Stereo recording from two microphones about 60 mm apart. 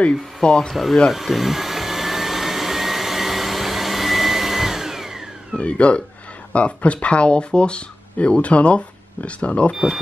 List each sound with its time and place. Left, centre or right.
0.0 s speech: centre
1.1 s vacuum cleaner: centre
5.6 s speech: centre